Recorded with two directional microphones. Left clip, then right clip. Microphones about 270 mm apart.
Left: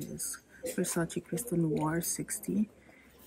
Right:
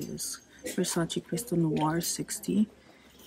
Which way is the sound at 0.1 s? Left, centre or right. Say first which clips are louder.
Right 4 dB; centre.